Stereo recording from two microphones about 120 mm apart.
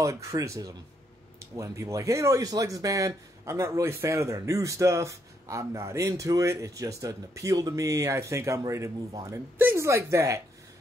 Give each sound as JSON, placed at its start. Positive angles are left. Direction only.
{"t": 0.0, "sound": "speech", "side_deg": -25}